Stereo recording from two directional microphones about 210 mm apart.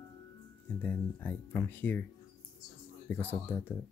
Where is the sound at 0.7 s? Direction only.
10° left (ahead or behind).